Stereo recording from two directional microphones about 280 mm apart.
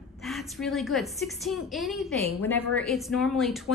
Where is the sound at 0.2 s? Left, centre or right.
Centre.